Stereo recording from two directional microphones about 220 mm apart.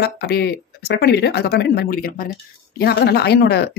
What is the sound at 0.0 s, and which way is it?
Speech, 50° left (ahead or behind).